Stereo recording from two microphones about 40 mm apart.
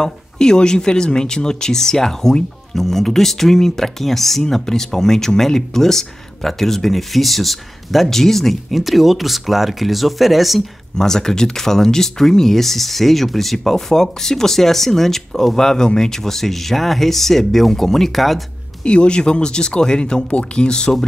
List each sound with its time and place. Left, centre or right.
0.0 s speech: centre
11.0 s speech: centre
18.8 s speech: left